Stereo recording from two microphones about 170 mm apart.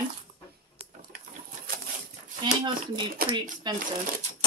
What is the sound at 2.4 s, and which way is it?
Speech, 25° right (ahead or behind).